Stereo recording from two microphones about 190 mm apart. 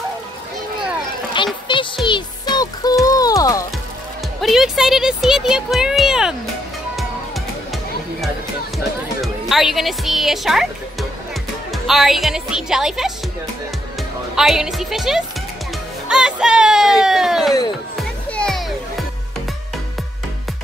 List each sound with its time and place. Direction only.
1.3 s speech: 25° left (ahead or behind)
2.0 s music: 25° left (ahead or behind)
4.4 s speech: centre (ahead or behind)
7.0 s music: centre (ahead or behind)
8.7 s speech: centre (ahead or behind)
14.3 s speech: 5° right (ahead or behind)
17.9 s music: 5° left (ahead or behind)